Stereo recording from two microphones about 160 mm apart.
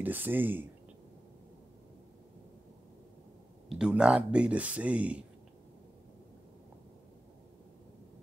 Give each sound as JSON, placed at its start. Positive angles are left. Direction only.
{"t": 0.0, "sound": "speech", "side_deg": -10}
{"t": 3.6, "sound": "speech", "side_deg": -5}